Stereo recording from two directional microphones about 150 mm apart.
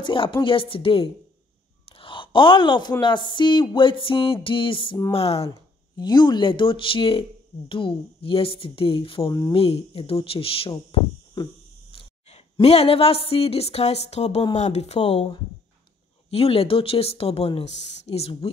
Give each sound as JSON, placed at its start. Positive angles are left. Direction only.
{"t": 0.0, "sound": "speech", "side_deg": 35}
{"t": 5.9, "sound": "speech", "side_deg": 30}
{"t": 11.4, "sound": "a sound", "side_deg": 30}
{"t": 11.9, "sound": "a woman's voice", "side_deg": 35}